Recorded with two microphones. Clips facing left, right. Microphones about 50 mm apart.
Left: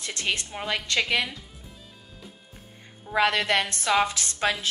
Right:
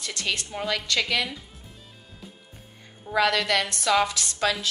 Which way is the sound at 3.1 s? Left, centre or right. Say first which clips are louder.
Even; left.